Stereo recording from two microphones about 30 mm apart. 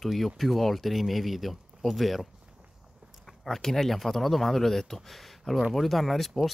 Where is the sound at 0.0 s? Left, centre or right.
Centre.